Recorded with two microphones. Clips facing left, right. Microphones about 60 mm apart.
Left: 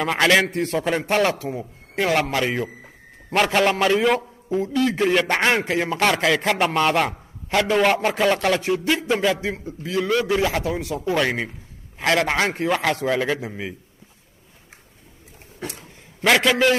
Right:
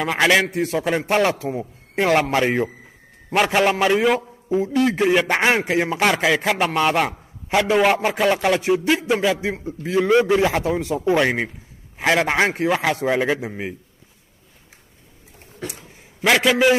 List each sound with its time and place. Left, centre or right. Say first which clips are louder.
0.0 s a man's voice: even; centre
1.5 s a sound: right 3 dB; centre
2.3 s speech: right 4 dB; right
3.3 s a man's voice: right 1 dB; centre
9.8 s speech: right 5 dB; right
12.0 s a man's voice: right 2 dB; centre
16.2 s a man's voice: right 1 dB; centre